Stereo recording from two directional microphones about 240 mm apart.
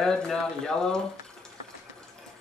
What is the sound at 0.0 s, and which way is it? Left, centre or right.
Speech, centre.